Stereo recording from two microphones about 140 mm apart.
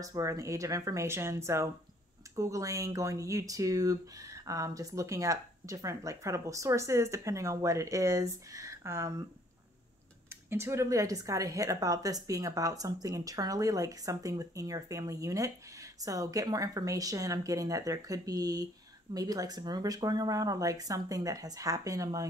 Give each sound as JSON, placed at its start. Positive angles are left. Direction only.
{"t": 0.0, "sound": "speech", "side_deg": -25}
{"t": 10.3, "sound": "speech", "side_deg": -20}